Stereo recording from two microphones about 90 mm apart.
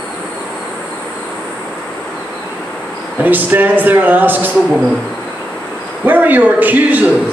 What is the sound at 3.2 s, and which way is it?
A man's voice, 20° right (ahead or behind).